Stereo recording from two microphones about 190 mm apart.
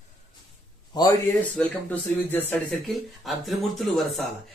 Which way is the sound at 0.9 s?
20° left (ahead or behind).